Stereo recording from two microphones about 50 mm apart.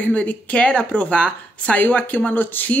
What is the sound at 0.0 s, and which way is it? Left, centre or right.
Speech, left.